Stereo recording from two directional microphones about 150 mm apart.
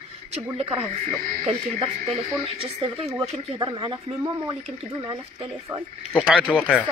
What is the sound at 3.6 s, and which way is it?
Speech, 30° right (ahead or behind).